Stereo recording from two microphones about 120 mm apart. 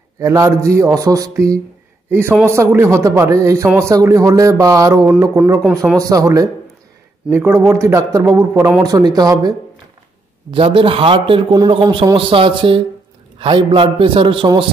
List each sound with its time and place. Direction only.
0.2 s speech: 25° right (ahead or behind)
10.5 s a man's voice: 45° right (ahead or behind)